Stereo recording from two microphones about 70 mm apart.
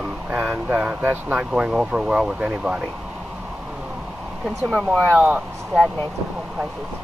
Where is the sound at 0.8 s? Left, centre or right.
Right.